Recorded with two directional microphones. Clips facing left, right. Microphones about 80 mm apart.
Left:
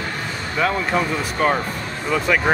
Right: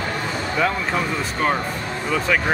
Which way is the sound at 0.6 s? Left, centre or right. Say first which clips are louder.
Left 3 dB; centre.